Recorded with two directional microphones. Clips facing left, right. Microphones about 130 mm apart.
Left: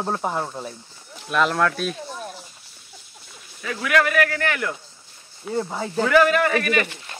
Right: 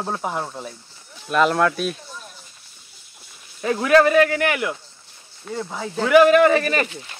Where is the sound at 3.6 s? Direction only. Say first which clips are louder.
Right 6 dB; 35° right (ahead or behind).